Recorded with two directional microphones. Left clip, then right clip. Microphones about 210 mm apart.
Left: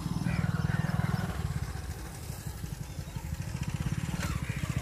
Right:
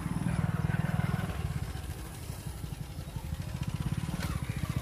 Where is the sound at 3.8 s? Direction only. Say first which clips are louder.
Left 2 dB; 50° right (ahead or behind).